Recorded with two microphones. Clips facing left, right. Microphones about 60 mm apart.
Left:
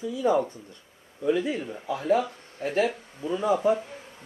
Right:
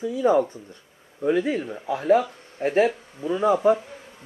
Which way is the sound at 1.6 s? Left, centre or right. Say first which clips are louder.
Right 3 dB; centre.